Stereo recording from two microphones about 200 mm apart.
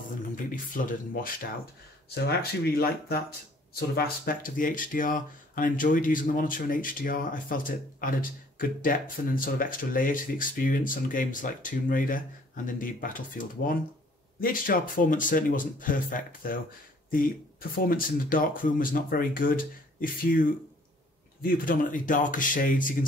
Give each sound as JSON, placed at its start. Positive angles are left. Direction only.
{"t": 0.7, "sound": "speech", "side_deg": 45}